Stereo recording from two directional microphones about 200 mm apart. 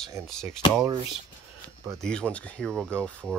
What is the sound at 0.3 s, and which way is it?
Speech, 5° left (ahead or behind).